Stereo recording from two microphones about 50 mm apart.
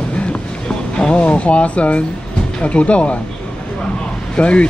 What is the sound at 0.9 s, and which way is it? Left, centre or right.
Speech, centre.